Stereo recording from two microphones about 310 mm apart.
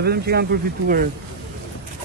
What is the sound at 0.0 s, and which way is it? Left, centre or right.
Speech, right.